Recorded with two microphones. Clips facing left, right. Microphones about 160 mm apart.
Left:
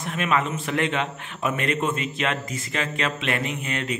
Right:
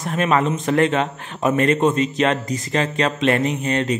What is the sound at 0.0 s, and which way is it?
A man's voice, 40° right (ahead or behind).